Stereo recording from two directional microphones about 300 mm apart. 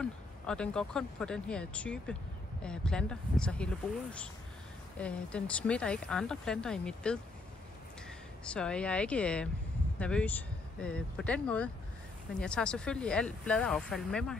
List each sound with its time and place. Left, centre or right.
0.0 s speech: centre
8.5 s speech: centre